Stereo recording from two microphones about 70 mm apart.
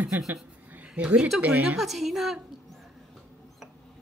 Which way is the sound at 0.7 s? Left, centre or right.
Centre.